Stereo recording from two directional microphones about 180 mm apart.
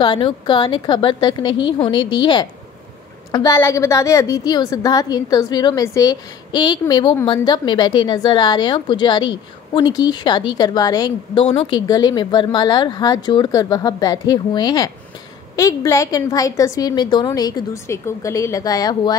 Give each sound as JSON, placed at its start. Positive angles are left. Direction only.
{"t": 0.0, "sound": "a woman's voice", "side_deg": 25}
{"t": 3.3, "sound": "a woman's voice", "side_deg": 20}